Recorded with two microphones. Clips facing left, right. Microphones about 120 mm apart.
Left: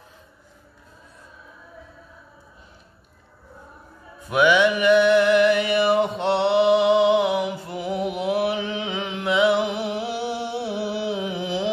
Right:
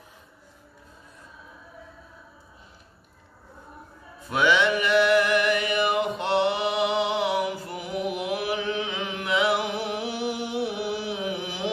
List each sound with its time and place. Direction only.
4.2 s music: 15° left (ahead or behind)